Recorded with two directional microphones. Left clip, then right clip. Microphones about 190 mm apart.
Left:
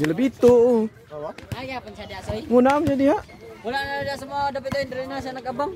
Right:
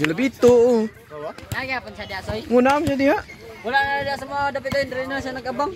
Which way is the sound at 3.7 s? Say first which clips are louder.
Right 6 dB; 25° right (ahead or behind).